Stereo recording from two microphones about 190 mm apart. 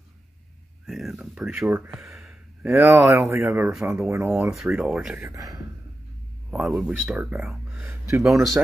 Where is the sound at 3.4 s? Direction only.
15° right (ahead or behind).